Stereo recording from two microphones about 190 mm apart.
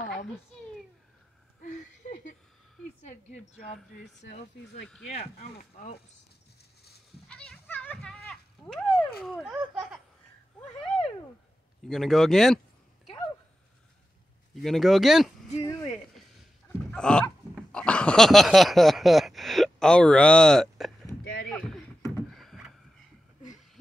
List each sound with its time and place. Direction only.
1.6 s a sound: 45° left (ahead or behind)
4.0 s speech: 60° left (ahead or behind)
5.4 s speech: 45° left (ahead or behind)
7.2 s a sound: 5° left (ahead or behind)
11.9 s speech: centre (ahead or behind)
14.5 s speech: centre (ahead or behind)
16.9 s dog: 5° left (ahead or behind)
21.2 s rowboat: 60° left (ahead or behind)
21.5 s a sound: 5° left (ahead or behind)